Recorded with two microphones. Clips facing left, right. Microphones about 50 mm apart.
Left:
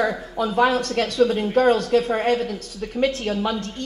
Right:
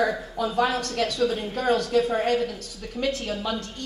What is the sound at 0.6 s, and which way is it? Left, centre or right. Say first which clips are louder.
Speech: left 5 dB; left.